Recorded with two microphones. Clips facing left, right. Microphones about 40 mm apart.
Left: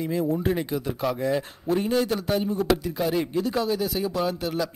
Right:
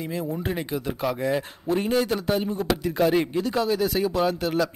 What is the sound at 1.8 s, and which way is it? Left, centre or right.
A man's voice, right.